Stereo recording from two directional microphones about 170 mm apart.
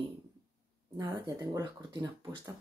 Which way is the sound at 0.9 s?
25° right (ahead or behind).